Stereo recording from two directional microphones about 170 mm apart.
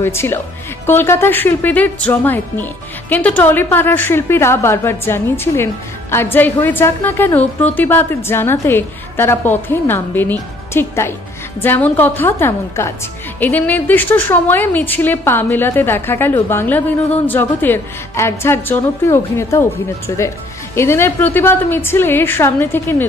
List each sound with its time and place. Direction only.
0.0 s speech: 15° left (ahead or behind)